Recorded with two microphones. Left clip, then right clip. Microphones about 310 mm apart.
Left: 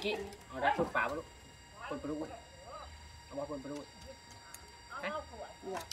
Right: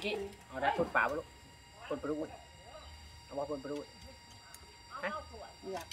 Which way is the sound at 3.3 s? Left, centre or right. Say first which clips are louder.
Right 3 dB; right.